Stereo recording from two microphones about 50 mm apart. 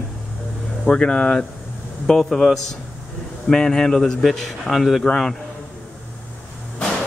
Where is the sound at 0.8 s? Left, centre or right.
Centre.